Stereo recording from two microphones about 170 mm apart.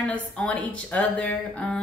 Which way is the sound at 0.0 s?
5° left (ahead or behind).